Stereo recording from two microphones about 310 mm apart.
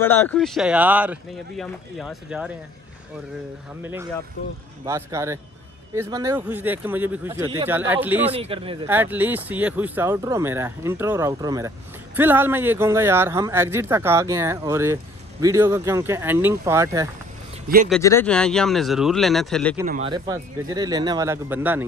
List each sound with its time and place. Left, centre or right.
0.0 s speech: centre
3.8 s speech: centre
8.3 s speech: centre
8.8 s speech: centre
17.8 s speech: centre
20.1 s speech: centre